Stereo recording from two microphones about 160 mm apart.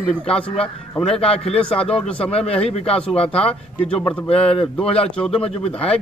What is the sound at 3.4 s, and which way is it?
Speech, 5° left (ahead or behind).